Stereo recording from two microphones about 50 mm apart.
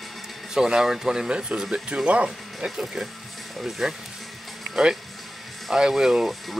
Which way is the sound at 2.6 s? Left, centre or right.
Centre.